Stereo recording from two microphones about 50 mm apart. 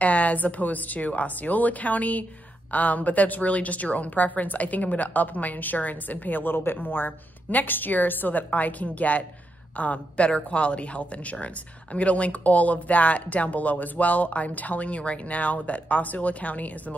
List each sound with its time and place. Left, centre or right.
0.0 s a woman's voice: left